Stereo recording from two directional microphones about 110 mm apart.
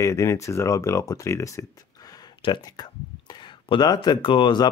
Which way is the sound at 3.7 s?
45° left (ahead or behind).